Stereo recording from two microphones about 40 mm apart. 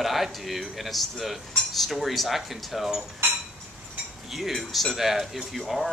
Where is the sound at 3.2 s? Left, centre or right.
Right.